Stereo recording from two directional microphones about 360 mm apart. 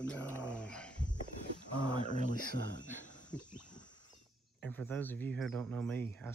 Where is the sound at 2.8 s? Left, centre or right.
Left.